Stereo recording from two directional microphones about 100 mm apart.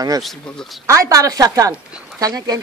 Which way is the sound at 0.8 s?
35° right (ahead or behind).